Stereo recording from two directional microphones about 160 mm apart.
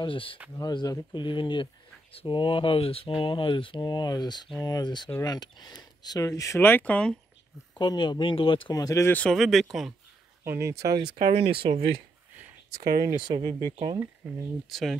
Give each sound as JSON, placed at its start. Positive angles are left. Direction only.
{"t": 0.0, "sound": "speech", "side_deg": 35}
{"t": 7.7, "sound": "speech", "side_deg": 30}
{"t": 8.7, "sound": "speech", "side_deg": 20}
{"t": 10.4, "sound": "speech", "side_deg": -15}
{"t": 11.1, "sound": "speech", "side_deg": -40}
{"t": 12.7, "sound": "speech", "side_deg": -60}
{"t": 13.0, "sound": "speech", "side_deg": -30}
{"t": 14.2, "sound": "speech", "side_deg": -10}